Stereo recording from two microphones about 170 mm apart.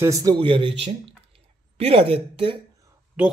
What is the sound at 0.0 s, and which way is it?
Speech, 20° right (ahead or behind).